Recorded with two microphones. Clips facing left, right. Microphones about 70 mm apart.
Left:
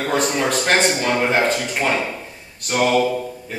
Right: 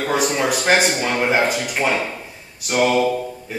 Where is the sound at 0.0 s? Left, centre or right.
Centre.